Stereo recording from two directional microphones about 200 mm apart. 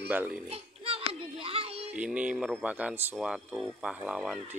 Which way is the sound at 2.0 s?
5° right (ahead or behind).